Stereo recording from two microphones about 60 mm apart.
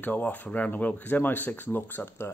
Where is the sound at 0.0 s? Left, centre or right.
Left.